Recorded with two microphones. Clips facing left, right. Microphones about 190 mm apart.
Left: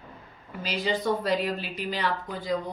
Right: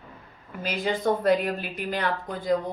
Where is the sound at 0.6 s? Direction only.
50° right (ahead or behind).